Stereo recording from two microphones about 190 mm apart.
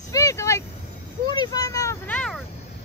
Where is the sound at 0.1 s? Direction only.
15° left (ahead or behind).